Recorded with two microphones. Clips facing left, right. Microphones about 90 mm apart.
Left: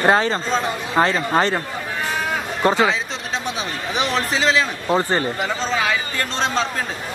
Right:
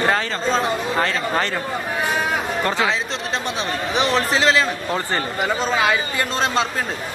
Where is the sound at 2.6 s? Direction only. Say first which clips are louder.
Left 9 dB; 20° left (ahead or behind).